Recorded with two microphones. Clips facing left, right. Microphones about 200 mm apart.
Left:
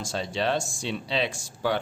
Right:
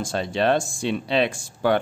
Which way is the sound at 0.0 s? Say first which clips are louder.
Right 5 dB; 55° right (ahead or behind).